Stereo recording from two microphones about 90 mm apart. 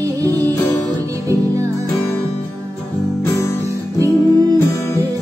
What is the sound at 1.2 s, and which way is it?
Music, 35° right (ahead or behind).